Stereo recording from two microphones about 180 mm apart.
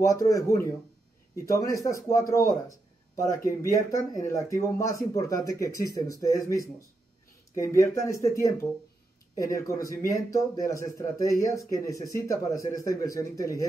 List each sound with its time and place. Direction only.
0.0 s speech: 20° left (ahead or behind)